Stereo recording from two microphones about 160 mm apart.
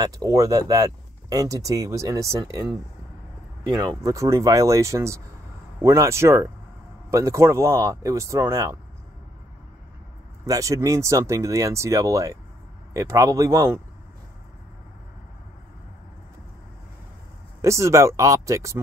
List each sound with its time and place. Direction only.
0.0 s speech: 25° right (ahead or behind)
10.4 s speech: 20° right (ahead or behind)
17.6 s speech: 20° right (ahead or behind)